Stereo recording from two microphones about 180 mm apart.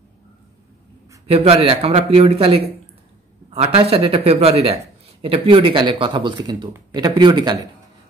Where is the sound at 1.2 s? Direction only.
35° right (ahead or behind).